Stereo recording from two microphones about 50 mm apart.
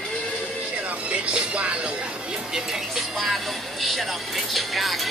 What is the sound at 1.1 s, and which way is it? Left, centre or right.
Music, right.